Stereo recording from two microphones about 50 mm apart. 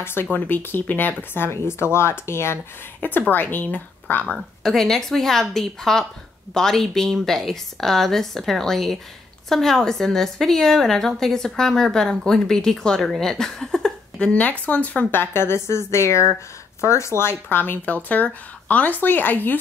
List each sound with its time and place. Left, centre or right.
0.0 s speech: left
0.3 s speech: left
1.7 s speech: left
3.0 s speech: left
4.4 s a woman's voice: centre
13.2 s a sound: centre
14.2 s speech: left
15.0 s a woman's voice: left